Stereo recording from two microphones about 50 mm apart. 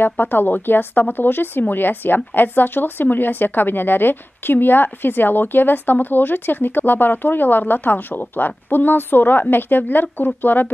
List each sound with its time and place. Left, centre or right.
0.0 s speech: left